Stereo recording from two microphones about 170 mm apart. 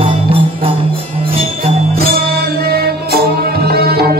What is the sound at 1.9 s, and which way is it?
Music, 65° right (ahead or behind).